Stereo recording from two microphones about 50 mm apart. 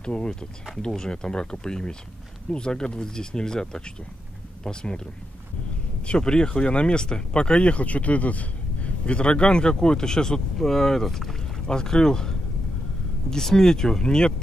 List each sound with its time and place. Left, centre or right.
0.0 s speech: centre
6.0 s speech: centre